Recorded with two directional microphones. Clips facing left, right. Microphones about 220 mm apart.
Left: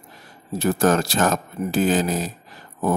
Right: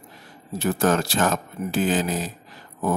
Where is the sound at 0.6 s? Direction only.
40° left (ahead or behind).